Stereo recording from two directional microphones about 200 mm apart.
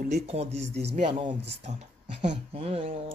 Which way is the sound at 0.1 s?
35° right (ahead or behind).